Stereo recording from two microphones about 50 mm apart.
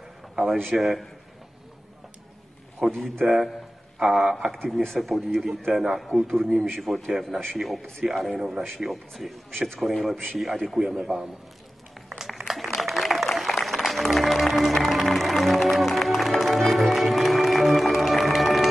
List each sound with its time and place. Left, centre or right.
0.7 s speech: centre
2.8 s speech: centre
3.2 s a man's voice: right
4.0 s a man's voice: centre
12.3 s applause: centre